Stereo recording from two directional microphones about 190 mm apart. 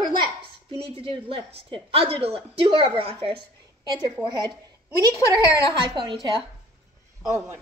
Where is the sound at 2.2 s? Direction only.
30° right (ahead or behind).